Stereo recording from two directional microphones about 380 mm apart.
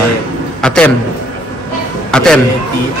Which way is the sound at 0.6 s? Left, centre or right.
Centre.